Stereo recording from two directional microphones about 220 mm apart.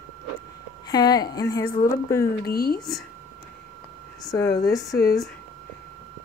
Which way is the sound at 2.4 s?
45° left (ahead or behind).